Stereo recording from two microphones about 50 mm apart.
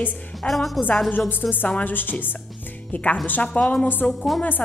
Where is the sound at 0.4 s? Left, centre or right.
Centre.